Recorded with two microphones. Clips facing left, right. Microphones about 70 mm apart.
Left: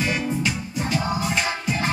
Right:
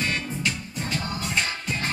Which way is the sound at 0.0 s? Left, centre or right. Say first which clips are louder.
Left 4 dB; centre.